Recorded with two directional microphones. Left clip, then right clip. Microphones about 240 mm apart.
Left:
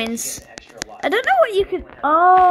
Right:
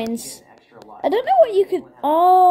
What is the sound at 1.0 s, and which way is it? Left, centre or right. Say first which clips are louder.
A woman's voice: right 1 dB; centre.